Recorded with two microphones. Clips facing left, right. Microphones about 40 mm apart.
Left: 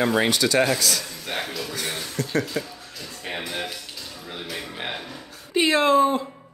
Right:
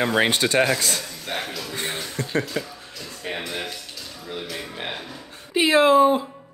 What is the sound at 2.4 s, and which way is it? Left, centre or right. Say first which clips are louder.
Speech: even; centre.